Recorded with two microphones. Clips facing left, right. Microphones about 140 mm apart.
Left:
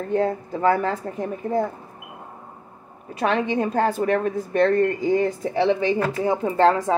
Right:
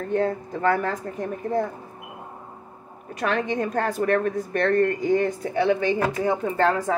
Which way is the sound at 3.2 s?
25° left (ahead or behind).